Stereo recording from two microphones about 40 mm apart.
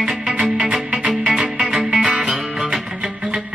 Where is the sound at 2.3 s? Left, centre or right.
Centre.